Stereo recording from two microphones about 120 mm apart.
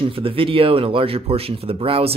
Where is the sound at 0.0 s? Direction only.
50° right (ahead or behind).